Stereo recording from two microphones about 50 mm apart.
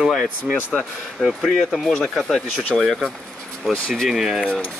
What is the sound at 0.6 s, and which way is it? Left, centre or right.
Speech, left.